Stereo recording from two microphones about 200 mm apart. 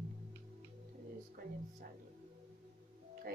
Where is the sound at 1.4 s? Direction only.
45° right (ahead or behind).